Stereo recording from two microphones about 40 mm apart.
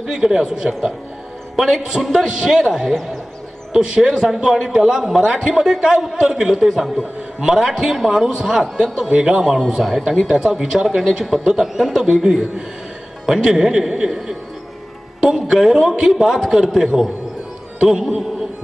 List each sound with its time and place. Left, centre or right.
0.0 s a man's voice: centre
7.0 s a man's voice: right
7.5 s a man's voice: centre